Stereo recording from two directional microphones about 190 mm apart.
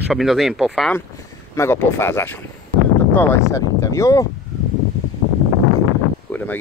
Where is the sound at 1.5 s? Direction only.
15° left (ahead or behind).